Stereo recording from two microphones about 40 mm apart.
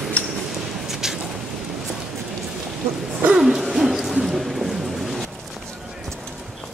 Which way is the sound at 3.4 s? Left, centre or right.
Centre.